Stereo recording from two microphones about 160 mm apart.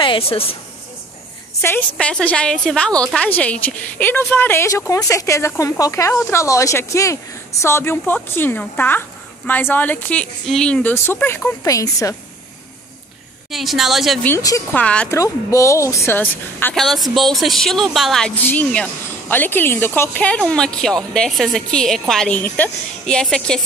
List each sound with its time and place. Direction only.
0.0 s a woman's voice: 35° left (ahead or behind)
1.6 s a woman's voice: 10° left (ahead or behind)
13.5 s speech: centre (ahead or behind)
14.2 s a woman's voice: 15° left (ahead or behind)
15.1 s speech: 20° left (ahead or behind)
16.7 s speech: centre (ahead or behind)